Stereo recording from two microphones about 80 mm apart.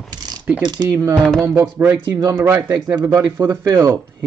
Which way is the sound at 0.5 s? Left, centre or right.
Centre.